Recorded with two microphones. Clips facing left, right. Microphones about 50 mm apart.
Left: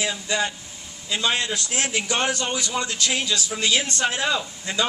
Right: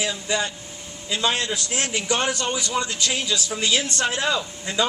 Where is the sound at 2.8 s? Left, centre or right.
Centre.